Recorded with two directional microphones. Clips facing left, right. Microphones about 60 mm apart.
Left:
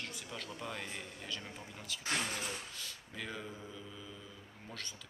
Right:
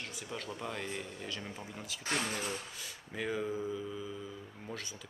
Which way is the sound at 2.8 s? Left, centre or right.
Centre.